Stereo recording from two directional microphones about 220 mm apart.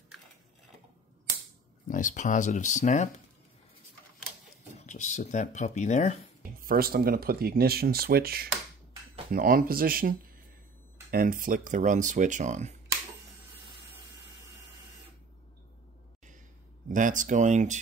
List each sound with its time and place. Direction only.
1.9 s speech: 35° left (ahead or behind)
4.7 s speech: 35° left (ahead or behind)
6.6 s speech: 40° right (ahead or behind)
16.9 s speech: 35° right (ahead or behind)